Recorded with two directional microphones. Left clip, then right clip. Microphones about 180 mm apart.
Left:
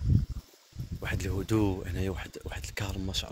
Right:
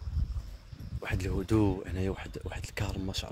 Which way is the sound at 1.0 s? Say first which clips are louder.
Even; 10° right (ahead or behind).